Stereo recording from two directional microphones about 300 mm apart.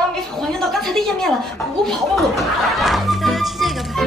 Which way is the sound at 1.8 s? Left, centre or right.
Centre.